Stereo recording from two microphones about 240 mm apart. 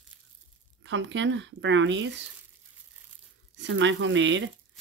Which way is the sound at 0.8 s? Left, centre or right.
Right.